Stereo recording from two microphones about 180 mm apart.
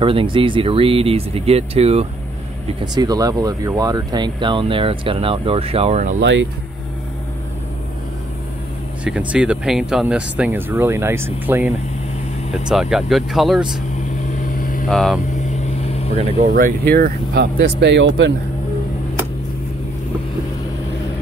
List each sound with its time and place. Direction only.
0.0 s speech: 30° right (ahead or behind)
2.8 s speech: 20° right (ahead or behind); by 6.1 s 40° right (ahead or behind)
9.0 s speech: 5° right (ahead or behind)
14.6 s vehicle: 50° left (ahead or behind)
14.9 s speech: centre (ahead or behind)
16.5 s speech: 55° right (ahead or behind); by 18.1 s 80° right